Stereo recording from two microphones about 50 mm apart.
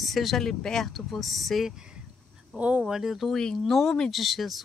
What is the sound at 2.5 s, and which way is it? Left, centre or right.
Speech, right.